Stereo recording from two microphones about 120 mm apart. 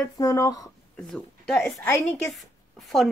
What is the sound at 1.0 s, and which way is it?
Speech, 5° left (ahead or behind).